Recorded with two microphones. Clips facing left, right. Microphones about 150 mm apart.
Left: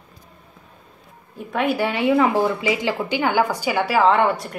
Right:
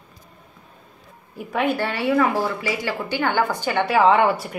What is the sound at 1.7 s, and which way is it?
A woman's voice, 15° left (ahead or behind).